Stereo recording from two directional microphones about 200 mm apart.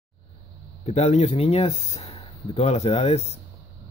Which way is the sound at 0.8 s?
35° left (ahead or behind).